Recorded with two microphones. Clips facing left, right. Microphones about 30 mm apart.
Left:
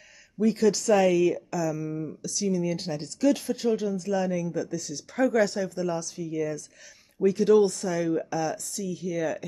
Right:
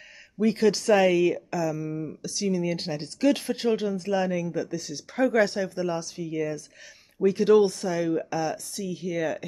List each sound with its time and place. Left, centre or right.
0.4 s speech: right; by 2.1 s centre
2.2 s speech: right